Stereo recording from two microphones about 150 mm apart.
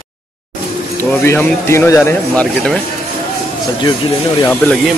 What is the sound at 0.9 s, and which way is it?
Speech, 15° left (ahead or behind).